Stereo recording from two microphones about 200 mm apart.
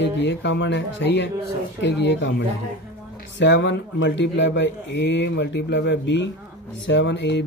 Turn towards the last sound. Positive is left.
turn(degrees=60)  # may be behind; listen again after turning